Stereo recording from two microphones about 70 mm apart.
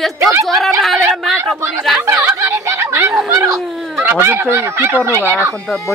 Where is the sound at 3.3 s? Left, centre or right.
Right.